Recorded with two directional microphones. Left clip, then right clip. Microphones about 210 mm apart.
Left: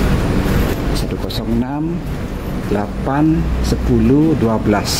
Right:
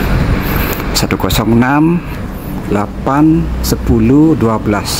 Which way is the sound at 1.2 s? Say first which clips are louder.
Right 9 dB; 10° right (ahead or behind).